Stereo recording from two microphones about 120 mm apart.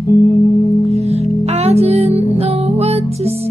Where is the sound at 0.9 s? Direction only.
60° right (ahead or behind).